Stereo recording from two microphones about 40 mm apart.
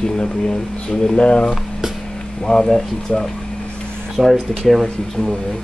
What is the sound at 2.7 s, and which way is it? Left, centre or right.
Stir, centre.